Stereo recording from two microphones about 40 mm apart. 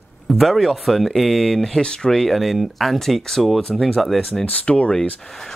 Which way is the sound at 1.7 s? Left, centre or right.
Left.